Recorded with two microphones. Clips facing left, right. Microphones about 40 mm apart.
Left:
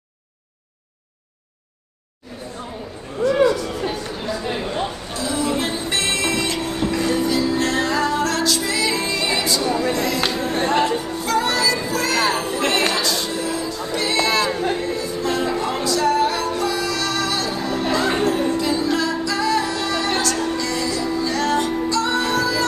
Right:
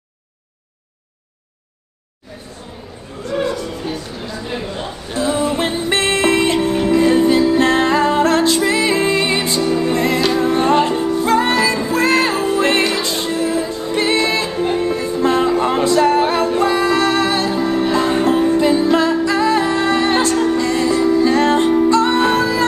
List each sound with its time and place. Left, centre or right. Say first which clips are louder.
5.1 s music: right 6 dB; right